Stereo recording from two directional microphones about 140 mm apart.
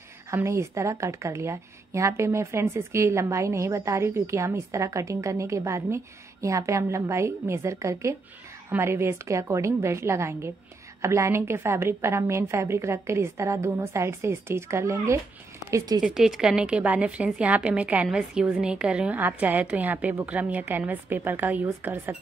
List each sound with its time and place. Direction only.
0.3 s a woman's voice: 20° right (ahead or behind)
16.0 s a woman's voice: 5° right (ahead or behind)